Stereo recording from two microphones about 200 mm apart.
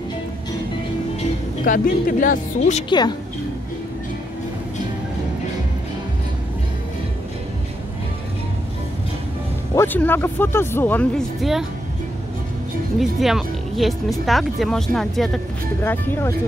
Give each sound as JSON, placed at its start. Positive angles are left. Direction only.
{"t": 1.6, "sound": "speech", "side_deg": 40}
{"t": 2.9, "sound": "a woman's voice", "side_deg": 20}
{"t": 9.8, "sound": "speech", "side_deg": 10}
{"t": 13.0, "sound": "speech", "side_deg": 0}